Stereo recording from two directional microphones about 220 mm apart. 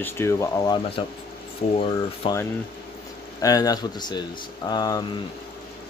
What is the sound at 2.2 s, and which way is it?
Speech, 25° left (ahead or behind).